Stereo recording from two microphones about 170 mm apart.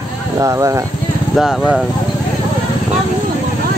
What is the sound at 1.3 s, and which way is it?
Speech, centre (ahead or behind).